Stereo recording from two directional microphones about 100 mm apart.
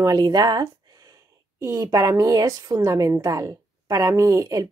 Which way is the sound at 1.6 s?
30° right (ahead or behind).